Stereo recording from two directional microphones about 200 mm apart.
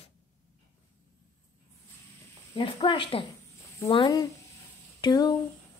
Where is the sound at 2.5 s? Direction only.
25° left (ahead or behind).